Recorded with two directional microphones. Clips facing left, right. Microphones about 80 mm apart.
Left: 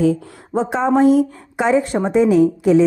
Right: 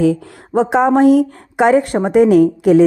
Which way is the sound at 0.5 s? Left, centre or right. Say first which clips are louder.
Right 5 dB; right.